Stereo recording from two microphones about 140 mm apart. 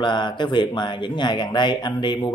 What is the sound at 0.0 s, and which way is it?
Speech, 35° left (ahead or behind).